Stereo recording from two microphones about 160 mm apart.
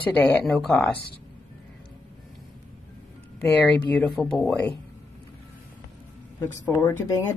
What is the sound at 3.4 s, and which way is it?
Speech, 10° left (ahead or behind).